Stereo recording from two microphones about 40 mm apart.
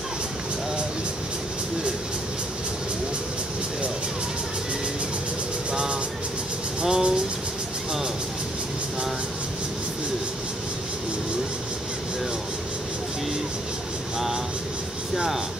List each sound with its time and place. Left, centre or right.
5.7 s train: right
6.8 s a sound: right
15.1 s vehicle: centre